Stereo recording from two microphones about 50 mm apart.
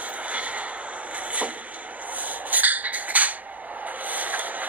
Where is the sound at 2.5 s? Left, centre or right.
Right.